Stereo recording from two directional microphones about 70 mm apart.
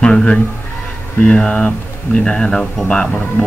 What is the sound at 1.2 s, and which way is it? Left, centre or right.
A man's voice, centre.